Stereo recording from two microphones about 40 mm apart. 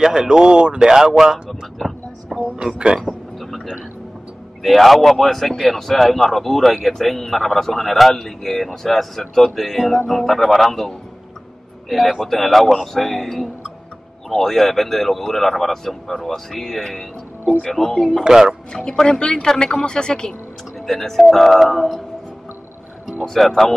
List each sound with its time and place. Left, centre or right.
0.0 s speech: centre
2.5 s speech: right
4.6 s a man's voice: centre
12.2 s a man's voice: centre
18.2 s speech: centre
18.9 s speech: centre
20.8 s a man's voice: centre
23.4 s a man's voice: centre